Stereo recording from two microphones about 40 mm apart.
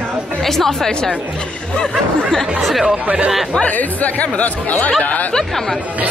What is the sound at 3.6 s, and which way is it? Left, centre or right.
Speech, left.